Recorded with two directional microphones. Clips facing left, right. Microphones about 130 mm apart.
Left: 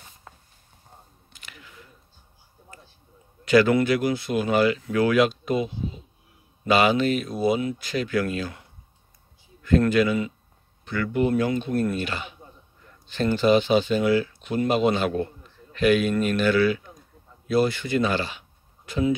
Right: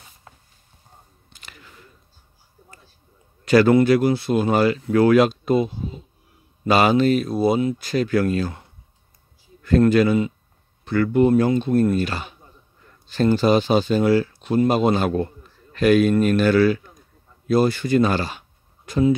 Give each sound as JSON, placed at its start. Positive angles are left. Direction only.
{"t": 1.3, "sound": "a sound", "side_deg": -35}
{"t": 3.4, "sound": "speech", "side_deg": -35}
{"t": 6.7, "sound": "speech", "side_deg": -35}